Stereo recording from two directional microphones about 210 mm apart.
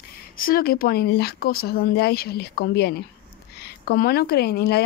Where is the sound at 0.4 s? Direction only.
45° left (ahead or behind).